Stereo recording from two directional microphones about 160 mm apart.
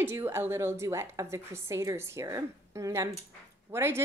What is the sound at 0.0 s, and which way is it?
A woman's voice, 15° right (ahead or behind).